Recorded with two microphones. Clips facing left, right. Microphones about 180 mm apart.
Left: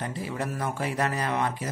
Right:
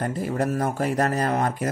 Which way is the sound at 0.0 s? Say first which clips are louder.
Right 7 dB; 45° right (ahead or behind).